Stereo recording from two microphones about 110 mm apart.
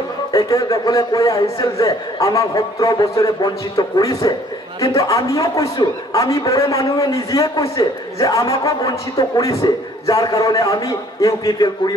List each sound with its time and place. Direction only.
0.3 s a man's voice: 30° left (ahead or behind)